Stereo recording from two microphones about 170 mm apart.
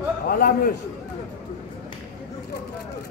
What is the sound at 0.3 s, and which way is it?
Speech, 60° left (ahead or behind).